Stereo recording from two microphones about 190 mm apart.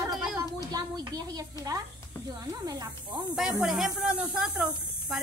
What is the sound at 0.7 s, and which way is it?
A woman's voice, 20° right (ahead or behind).